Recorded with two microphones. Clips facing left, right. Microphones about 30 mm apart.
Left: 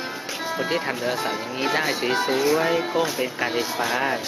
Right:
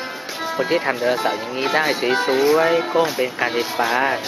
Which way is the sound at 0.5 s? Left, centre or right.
Centre.